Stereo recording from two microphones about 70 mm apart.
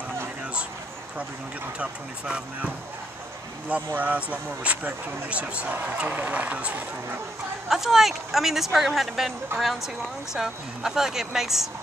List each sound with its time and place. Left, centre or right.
1.8 s speech: centre
7.7 s speech: centre